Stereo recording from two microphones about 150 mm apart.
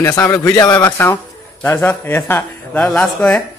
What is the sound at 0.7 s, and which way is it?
Speech, 10° left (ahead or behind).